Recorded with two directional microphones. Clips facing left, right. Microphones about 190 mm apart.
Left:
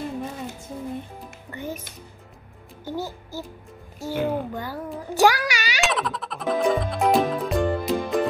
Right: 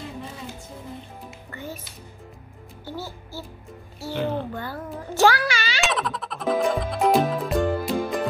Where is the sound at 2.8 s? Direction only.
15° left (ahead or behind).